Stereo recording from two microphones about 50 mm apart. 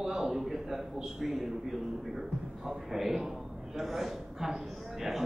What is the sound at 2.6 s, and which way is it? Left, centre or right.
A man's voice, centre.